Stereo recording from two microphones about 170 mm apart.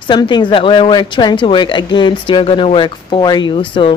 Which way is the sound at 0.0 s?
25° left (ahead or behind).